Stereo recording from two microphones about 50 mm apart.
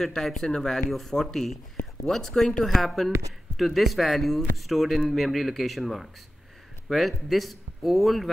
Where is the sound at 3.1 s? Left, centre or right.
Right.